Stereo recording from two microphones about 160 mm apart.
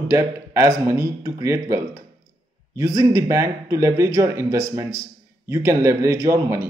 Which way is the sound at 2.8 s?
20° right (ahead or behind).